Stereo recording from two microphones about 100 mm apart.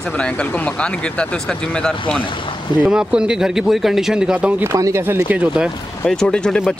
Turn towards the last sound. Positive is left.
turn(degrees=5)  # may be behind; listen again after turning